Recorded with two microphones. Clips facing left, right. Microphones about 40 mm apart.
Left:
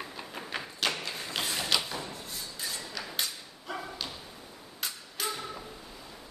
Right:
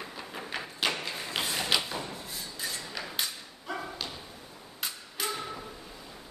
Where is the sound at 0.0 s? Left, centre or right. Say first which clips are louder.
Even; centre.